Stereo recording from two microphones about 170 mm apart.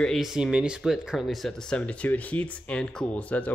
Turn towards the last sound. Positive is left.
turn(degrees=10)  # may be behind; listen again after turning